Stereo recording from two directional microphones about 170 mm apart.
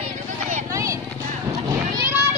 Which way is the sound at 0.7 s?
20° right (ahead or behind).